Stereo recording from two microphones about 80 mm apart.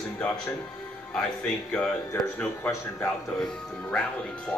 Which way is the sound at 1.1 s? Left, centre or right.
Centre.